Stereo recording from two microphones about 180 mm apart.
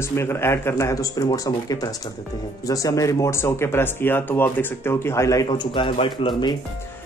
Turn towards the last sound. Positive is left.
turn(degrees=30)  # may be behind; listen again after turning